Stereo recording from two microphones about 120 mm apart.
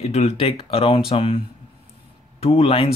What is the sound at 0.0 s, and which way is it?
Speech, 60° left (ahead or behind).